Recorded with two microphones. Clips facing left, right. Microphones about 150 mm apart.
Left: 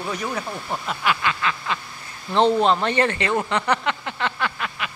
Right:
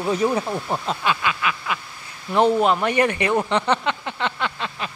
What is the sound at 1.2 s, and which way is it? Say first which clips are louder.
Snicker: even; 10° right (ahead or behind).